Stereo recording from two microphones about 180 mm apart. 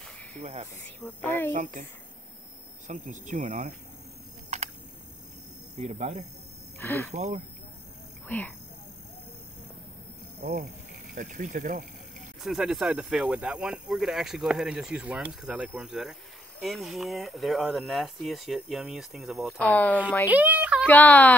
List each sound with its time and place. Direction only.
0.3 s speech: 40° right (ahead or behind)
0.8 s a woman's voice: 10° left (ahead or behind)
1.5 s speech: 45° right (ahead or behind)
2.9 s speech: 40° right (ahead or behind)
4.5 s a sound: 40° right (ahead or behind)
5.9 s speech: 45° right (ahead or behind)
6.8 s speech: 15° left (ahead or behind)
7.1 s speech: 40° right (ahead or behind)
10.4 s speech: 45° right (ahead or behind)
12.4 s a woman's voice: centre (ahead or behind)
20.2 s a sound: 10° right (ahead or behind)
20.8 s a woman's voice: 10° left (ahead or behind)